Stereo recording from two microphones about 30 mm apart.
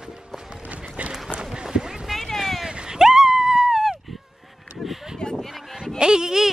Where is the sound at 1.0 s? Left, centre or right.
Right.